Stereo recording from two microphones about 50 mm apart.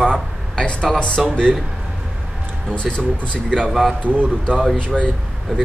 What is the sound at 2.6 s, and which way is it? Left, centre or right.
Speech, centre.